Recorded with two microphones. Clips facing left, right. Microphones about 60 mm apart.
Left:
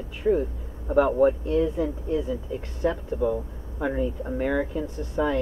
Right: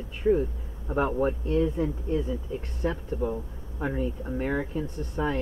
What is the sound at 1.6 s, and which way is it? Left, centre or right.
Speech, centre.